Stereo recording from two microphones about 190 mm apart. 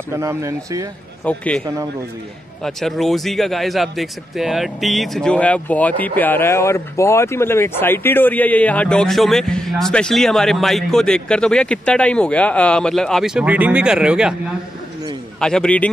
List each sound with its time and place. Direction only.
0.1 s speech: 15° right (ahead or behind)
1.2 s a man's voice: 5° left (ahead or behind)
2.6 s speech: centre (ahead or behind)
15.4 s speech: 5° left (ahead or behind)